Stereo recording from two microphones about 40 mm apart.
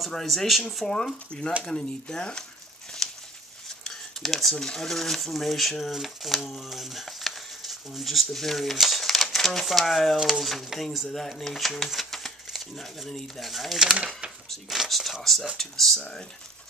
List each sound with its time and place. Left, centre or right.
0.1 s speech: centre
0.8 s speech: centre
3.0 s a sound: centre
4.6 s speech: centre
11.1 s speech: centre
13.8 s speech: right
14.7 s speech: centre